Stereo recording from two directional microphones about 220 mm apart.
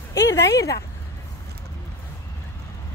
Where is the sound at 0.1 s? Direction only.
15° left (ahead or behind).